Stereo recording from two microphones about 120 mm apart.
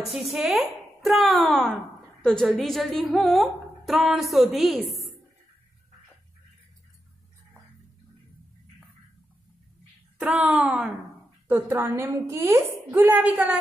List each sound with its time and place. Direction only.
0.0 s speech: centre (ahead or behind)
10.1 s a sound: 10° right (ahead or behind)
11.4 s a woman's voice: 20° right (ahead or behind)